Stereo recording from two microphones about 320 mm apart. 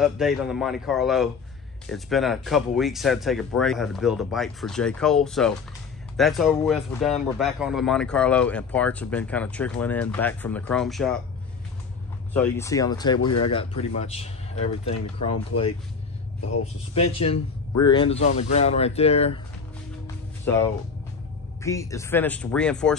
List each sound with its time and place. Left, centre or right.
0.0 s speech: centre
12.4 s a man's voice: centre
20.5 s speech: centre
21.6 s speech: centre